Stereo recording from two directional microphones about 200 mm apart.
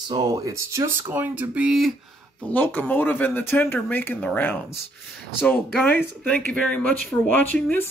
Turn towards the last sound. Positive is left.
turn(degrees=10)  # may be behind; listen again after turning